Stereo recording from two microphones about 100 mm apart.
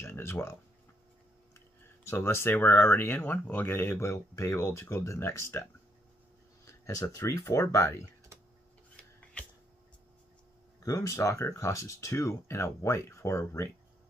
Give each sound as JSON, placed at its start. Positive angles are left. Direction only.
{"t": 0.0, "sound": "speech", "side_deg": 25}
{"t": 2.0, "sound": "speech", "side_deg": 25}
{"t": 10.8, "sound": "speech", "side_deg": 35}